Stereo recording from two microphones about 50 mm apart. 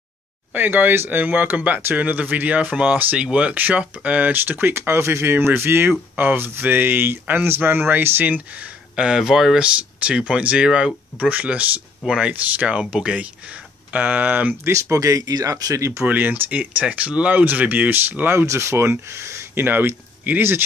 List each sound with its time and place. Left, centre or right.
0.5 s speech: right
4.5 s speech: right
8.9 s speech: centre
9.6 s speech: right
14.6 s speech: right
16.1 s speech: right
18.3 s speech: right
19.5 s speech: right